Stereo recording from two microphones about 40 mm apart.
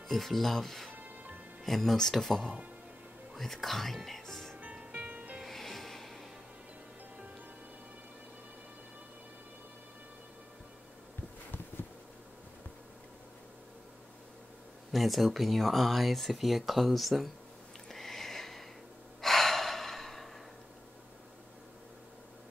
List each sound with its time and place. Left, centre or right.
0.1 s speech: centre
0.9 s music: right
1.6 s speech: centre
4.6 s music: right
5.4 s music: centre
14.9 s speech: centre
17.8 s a sound: centre
19.2 s gasp: centre